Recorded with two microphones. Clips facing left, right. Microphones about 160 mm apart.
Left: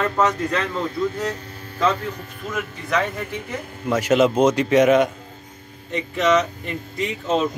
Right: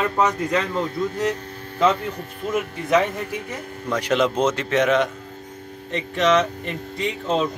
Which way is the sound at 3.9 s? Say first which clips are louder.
Left 4 dB; 5° left (ahead or behind).